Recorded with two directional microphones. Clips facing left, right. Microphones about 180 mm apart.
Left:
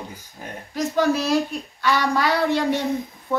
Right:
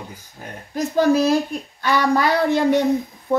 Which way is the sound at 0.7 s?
50° right (ahead or behind).